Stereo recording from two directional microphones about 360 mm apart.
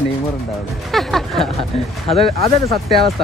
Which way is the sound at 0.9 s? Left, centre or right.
Centre.